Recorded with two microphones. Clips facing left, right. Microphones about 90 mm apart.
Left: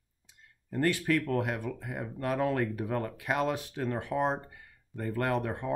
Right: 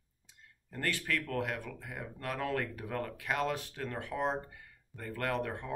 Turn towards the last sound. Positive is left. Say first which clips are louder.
# left 4 dB
turn(degrees=20)  # may be behind; listen again after turning